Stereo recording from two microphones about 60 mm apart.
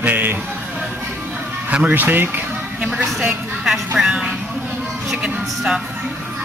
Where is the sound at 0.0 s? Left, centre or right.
Right.